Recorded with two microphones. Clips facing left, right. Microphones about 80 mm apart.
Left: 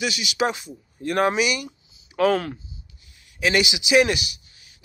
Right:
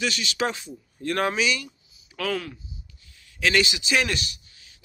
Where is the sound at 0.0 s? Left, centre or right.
Centre.